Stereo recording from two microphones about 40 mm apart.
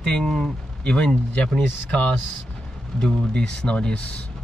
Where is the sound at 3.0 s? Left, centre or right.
Left.